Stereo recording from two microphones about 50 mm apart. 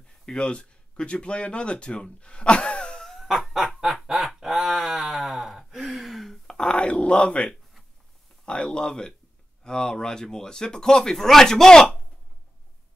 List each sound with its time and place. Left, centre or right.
0.2 s speech: centre
3.1 s chicken: centre
4.4 s a sound: centre
5.3 s gasp: centre
6.5 s a sound: centre
8.6 s speech: centre